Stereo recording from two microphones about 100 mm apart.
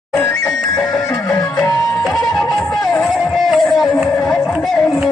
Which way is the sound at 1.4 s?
Centre (ahead or behind).